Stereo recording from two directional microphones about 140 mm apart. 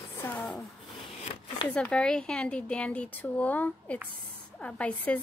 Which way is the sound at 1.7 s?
5° left (ahead or behind).